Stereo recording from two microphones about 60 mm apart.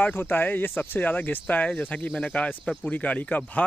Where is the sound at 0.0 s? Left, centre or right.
Left.